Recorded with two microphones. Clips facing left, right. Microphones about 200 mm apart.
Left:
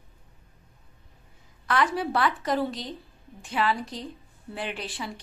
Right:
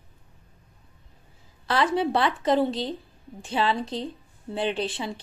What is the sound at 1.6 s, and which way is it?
A woman's voice, 30° right (ahead or behind).